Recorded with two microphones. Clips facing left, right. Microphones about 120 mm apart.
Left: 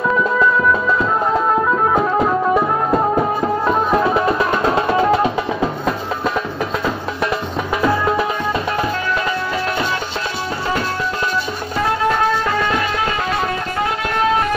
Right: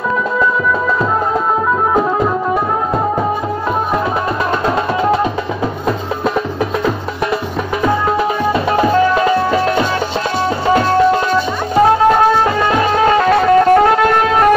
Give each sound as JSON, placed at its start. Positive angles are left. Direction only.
{"t": 13.2, "sound": "music", "side_deg": -55}